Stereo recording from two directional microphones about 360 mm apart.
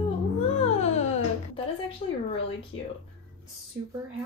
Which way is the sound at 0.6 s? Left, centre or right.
Centre.